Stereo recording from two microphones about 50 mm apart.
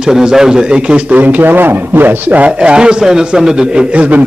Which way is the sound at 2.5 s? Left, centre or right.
Centre.